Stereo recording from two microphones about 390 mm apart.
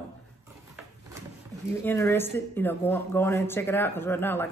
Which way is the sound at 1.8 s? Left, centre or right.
Centre.